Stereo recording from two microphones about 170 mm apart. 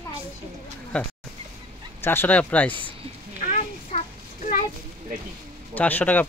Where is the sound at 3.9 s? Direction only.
40° left (ahead or behind).